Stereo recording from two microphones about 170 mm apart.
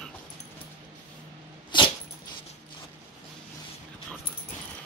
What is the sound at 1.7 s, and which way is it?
Dog, 25° left (ahead or behind).